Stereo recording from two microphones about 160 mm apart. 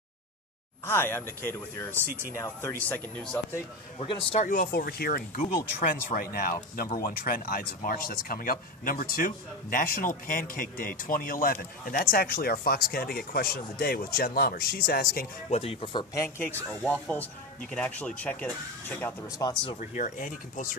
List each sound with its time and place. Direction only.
0.8 s speech: 15° left (ahead or behind)
4.0 s speech: 35° left (ahead or behind)
4.5 s speech: 65° left (ahead or behind)
15.5 s speech: 35° left (ahead or behind)
16.2 s speech: 15° left (ahead or behind)
19.2 s speech: 25° left (ahead or behind)
19.8 s speech: 50° left (ahead or behind)